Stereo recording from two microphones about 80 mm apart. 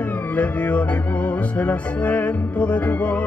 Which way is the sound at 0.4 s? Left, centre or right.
Centre.